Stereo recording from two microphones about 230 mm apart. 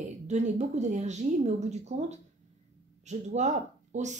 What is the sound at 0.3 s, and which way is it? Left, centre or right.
A woman's voice, right.